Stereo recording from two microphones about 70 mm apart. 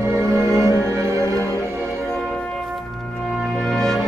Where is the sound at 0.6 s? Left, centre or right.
Right.